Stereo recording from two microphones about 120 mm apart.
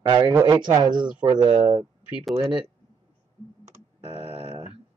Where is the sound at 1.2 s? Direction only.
40° right (ahead or behind).